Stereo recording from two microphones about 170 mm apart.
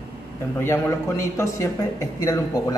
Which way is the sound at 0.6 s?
15° left (ahead or behind).